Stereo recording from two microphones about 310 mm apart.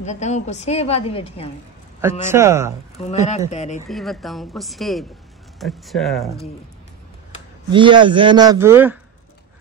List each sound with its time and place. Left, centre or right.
0.0 s a woman's voice: left
2.0 s a man's voice: centre
3.0 s a woman's voice: left
3.9 s speech: centre
7.7 s a man's voice: centre